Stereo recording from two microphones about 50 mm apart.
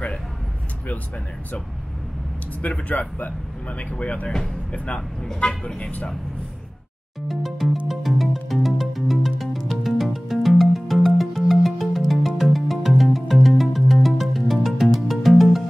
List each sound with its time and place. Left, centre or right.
2.6 s a man's voice: left
7.2 s music: centre